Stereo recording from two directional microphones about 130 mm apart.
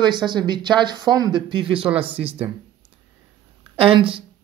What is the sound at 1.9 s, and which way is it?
Speech, 10° right (ahead or behind).